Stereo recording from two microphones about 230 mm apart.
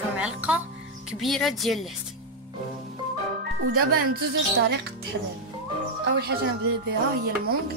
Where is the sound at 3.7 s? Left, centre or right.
Right.